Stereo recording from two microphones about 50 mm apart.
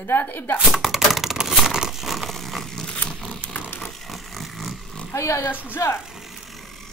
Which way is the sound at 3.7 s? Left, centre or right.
Left.